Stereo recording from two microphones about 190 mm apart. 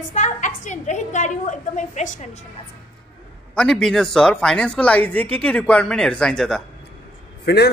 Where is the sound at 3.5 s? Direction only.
5° left (ahead or behind).